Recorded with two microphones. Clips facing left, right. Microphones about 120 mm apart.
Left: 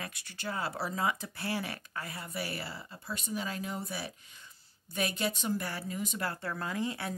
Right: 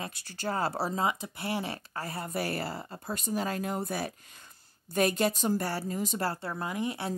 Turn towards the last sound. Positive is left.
turn(degrees=-20)  # may be behind; listen again after turning